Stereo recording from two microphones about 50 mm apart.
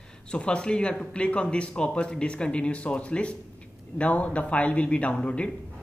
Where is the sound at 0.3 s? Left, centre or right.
Left.